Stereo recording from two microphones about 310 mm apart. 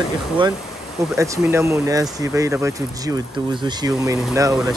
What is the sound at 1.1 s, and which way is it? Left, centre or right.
Speech, centre.